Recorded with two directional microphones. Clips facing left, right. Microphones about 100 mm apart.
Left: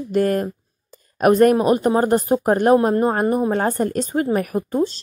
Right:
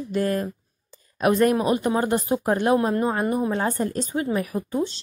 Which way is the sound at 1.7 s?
40° left (ahead or behind).